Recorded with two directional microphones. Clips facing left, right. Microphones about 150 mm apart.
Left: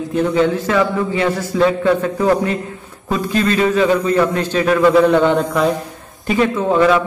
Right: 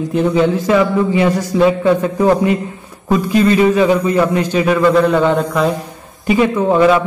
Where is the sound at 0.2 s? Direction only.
15° right (ahead or behind).